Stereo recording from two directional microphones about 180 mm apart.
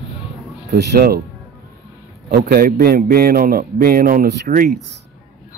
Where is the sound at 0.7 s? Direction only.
65° right (ahead or behind).